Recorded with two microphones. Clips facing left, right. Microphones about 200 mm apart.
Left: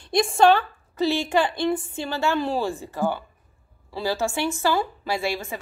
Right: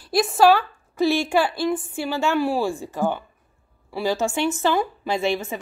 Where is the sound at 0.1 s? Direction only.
5° right (ahead or behind).